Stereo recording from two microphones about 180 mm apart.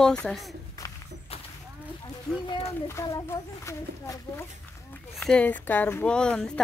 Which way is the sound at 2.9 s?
20° left (ahead or behind).